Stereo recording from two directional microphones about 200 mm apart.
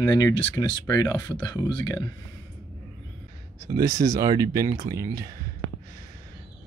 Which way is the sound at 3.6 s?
15° right (ahead or behind).